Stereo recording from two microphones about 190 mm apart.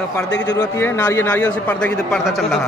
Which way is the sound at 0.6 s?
10° left (ahead or behind).